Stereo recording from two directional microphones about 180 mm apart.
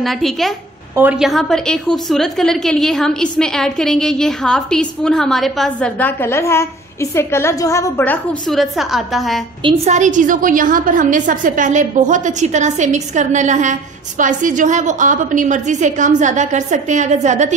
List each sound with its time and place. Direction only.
0.0 s a woman's voice: centre (ahead or behind)
9.8 s a woman's voice: 45° right (ahead or behind)